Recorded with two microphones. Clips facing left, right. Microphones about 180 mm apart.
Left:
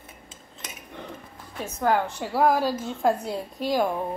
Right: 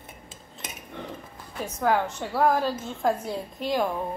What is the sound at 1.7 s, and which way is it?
A woman's voice, 5° left (ahead or behind).